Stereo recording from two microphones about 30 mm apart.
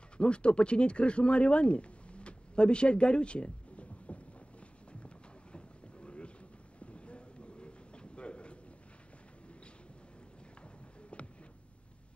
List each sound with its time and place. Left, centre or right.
0.2 s speech: left
5.0 s a sound: left
6.8 s vehicle: left
10.6 s music: left